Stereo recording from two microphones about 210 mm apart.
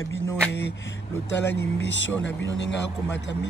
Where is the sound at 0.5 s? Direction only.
55° left (ahead or behind).